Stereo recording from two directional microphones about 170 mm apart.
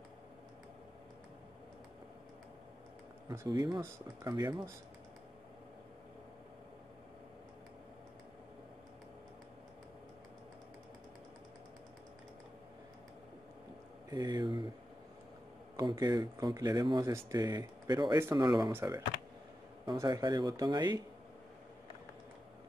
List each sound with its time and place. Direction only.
3.3 s speech: 20° right (ahead or behind)
14.1 s a sound: 25° right (ahead or behind)
15.7 s speech: 25° right (ahead or behind)